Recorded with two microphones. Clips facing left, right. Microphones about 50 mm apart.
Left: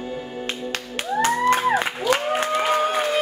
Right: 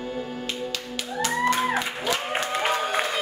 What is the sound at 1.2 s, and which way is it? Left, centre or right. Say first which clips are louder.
Music: left 4 dB; left.